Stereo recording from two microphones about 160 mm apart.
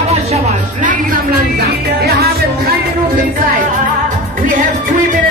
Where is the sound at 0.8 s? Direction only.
70° right (ahead or behind).